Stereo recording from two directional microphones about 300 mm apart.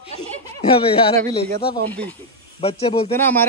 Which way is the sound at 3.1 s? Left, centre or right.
Centre.